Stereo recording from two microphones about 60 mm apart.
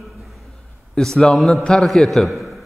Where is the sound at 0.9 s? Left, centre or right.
Centre.